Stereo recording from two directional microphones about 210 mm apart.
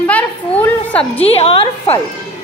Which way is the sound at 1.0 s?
30° left (ahead or behind).